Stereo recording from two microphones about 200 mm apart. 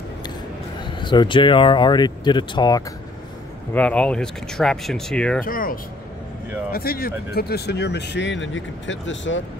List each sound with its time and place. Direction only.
0.8 s speech: 25° left (ahead or behind)
3.7 s speech: 5° left (ahead or behind)
5.4 s speech: 45° left (ahead or behind); by 9.4 s 70° left (ahead or behind)